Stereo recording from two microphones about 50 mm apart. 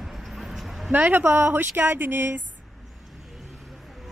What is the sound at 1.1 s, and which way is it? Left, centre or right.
Speech, right.